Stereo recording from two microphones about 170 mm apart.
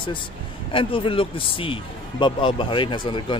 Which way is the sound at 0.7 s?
30° left (ahead or behind).